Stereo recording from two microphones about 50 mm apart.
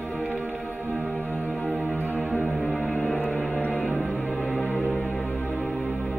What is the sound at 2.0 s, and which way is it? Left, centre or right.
Music, left.